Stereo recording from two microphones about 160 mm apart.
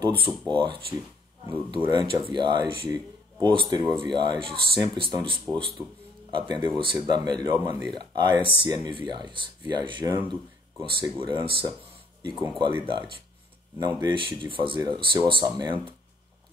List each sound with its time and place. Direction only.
0.0 s speech: 35° right (ahead or behind)
6.5 s speech: 30° right (ahead or behind)